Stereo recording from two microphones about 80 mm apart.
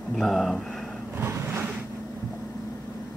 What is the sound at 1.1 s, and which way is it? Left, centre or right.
Vehicle, right.